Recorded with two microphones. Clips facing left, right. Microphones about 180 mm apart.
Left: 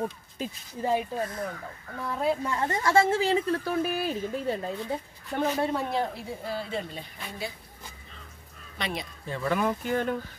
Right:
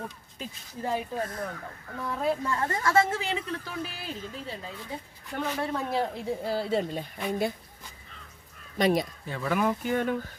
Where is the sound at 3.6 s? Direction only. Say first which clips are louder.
Left 9 dB; 50° left (ahead or behind).